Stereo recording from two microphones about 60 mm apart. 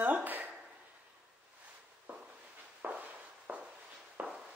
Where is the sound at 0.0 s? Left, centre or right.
Right.